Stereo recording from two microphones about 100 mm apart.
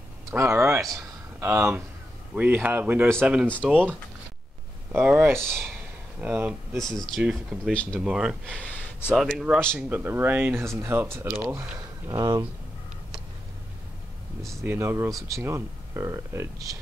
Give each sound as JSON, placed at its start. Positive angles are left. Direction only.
{"t": 0.3, "sound": "speech", "side_deg": -25}
{"t": 0.9, "sound": "a sound", "side_deg": -30}
{"t": 2.3, "sound": "speech", "side_deg": -15}
{"t": 3.4, "sound": "speech", "side_deg": 15}
{"t": 5.1, "sound": "speech", "side_deg": -25}
{"t": 6.8, "sound": "a man's voice", "side_deg": 5}
{"t": 7.2, "sound": "speech", "side_deg": -10}
{"t": 7.7, "sound": "speech", "side_deg": 10}
{"t": 8.0, "sound": "speech", "side_deg": -10}
{"t": 8.5, "sound": "a sound", "side_deg": 15}
{"t": 9.1, "sound": "a man's voice", "side_deg": 0}
{"t": 9.8, "sound": "speech", "side_deg": -20}
{"t": 12.1, "sound": "speech", "side_deg": -40}
{"t": 14.6, "sound": "speech", "side_deg": -25}